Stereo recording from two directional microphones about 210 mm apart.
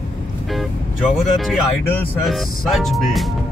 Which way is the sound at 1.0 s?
Centre (ahead or behind).